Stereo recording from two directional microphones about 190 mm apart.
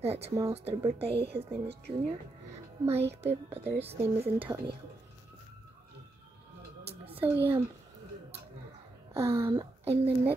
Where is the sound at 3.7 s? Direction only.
30° right (ahead or behind).